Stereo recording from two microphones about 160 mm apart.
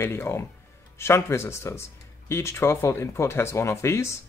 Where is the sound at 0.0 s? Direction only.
15° left (ahead or behind).